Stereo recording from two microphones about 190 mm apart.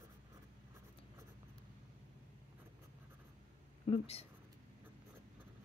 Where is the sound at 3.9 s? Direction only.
30° left (ahead or behind).